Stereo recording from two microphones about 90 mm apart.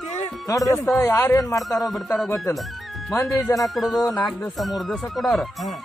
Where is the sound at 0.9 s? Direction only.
35° left (ahead or behind).